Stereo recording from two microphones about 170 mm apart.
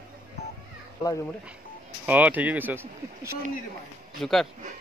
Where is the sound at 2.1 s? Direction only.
10° right (ahead or behind).